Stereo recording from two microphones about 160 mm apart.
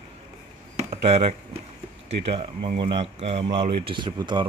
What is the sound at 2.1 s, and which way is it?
Speech, 40° right (ahead or behind).